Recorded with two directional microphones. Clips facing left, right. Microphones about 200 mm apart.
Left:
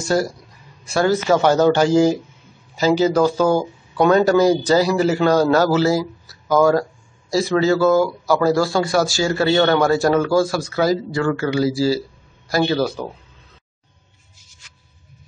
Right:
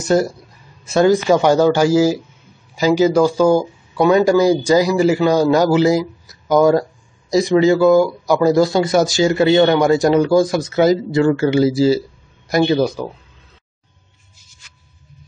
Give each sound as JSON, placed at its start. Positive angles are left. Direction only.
{"t": 0.0, "sound": "speech", "side_deg": -20}